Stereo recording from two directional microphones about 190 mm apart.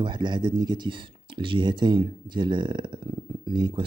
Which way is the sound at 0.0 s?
25° right (ahead or behind).